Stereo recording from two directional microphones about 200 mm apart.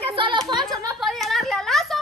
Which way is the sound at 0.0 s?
25° right (ahead or behind).